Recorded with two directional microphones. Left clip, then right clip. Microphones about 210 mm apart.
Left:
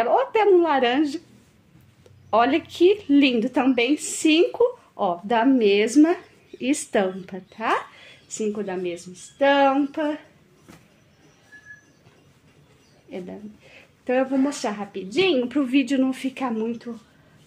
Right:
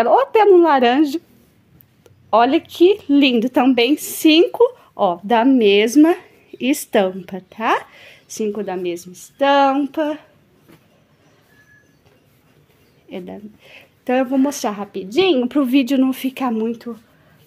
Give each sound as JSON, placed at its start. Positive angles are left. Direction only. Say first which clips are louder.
{"t": 0.0, "sound": "speech", "louder": "right 6 dB", "side_deg": -40}
{"t": 2.2, "sound": "speech", "louder": "right 5 dB", "side_deg": -30}
{"t": 13.1, "sound": "speech", "louder": "right 4 dB", "side_deg": -40}